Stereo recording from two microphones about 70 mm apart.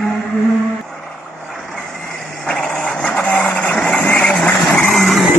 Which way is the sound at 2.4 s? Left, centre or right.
Centre.